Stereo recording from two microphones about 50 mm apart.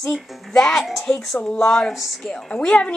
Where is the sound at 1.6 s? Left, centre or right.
Centre.